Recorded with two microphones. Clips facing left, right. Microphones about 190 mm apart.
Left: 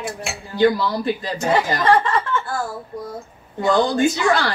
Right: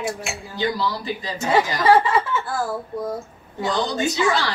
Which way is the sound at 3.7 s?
50° left (ahead or behind).